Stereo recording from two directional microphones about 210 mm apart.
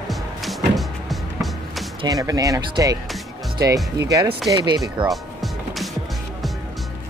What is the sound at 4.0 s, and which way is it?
Speech, 15° right (ahead or behind).